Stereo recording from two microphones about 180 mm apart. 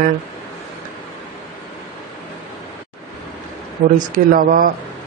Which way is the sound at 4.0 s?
50° right (ahead or behind).